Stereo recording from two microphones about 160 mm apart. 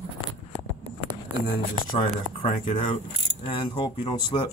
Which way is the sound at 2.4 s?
30° left (ahead or behind).